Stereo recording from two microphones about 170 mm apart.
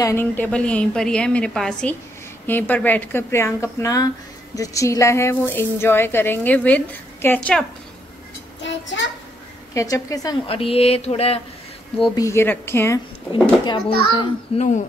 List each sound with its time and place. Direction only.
0.0 s a woman's voice: 15° left (ahead or behind)
8.6 s child singing: 90° left
9.8 s speech: 20° left (ahead or behind)
10.4 s speech: 35° left (ahead or behind)
12.2 s a woman's voice: 15° left (ahead or behind)
13.3 s speech: 30° left (ahead or behind)